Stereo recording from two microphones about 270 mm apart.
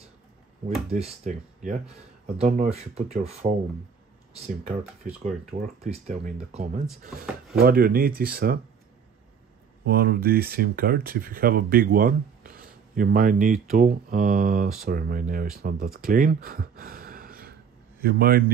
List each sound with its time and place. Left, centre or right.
0.8 s speech: right
7.2 s speech: centre
7.6 s speech: right
9.8 s speech: right